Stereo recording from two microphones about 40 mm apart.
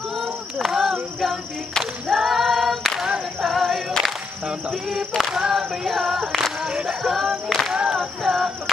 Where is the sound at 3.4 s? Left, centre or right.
Centre.